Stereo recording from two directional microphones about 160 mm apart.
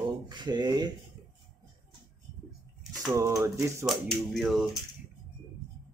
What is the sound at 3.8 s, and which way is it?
Speech, centre (ahead or behind).